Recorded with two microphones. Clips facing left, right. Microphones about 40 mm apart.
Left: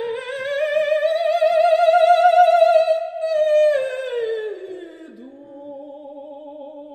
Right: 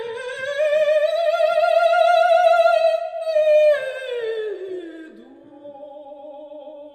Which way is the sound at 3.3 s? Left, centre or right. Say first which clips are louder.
Right 1 dB; centre.